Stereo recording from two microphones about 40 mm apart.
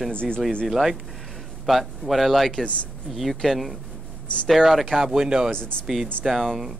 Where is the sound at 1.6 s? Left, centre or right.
Centre.